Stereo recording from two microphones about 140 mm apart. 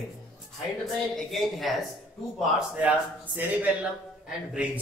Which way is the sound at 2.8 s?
10° right (ahead or behind).